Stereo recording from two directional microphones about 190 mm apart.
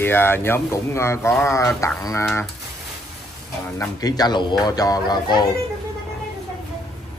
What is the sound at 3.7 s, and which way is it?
Speech, 20° left (ahead or behind).